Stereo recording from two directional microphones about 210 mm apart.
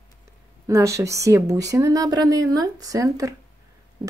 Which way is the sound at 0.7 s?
15° right (ahead or behind).